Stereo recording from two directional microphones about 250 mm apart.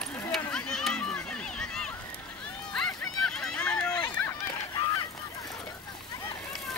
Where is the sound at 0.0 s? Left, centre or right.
Centre.